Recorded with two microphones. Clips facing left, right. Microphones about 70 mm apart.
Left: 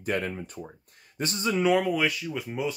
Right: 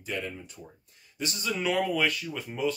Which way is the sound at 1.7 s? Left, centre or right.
Centre.